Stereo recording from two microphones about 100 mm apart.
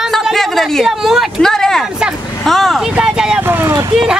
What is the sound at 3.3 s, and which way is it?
Speech, 20° right (ahead or behind).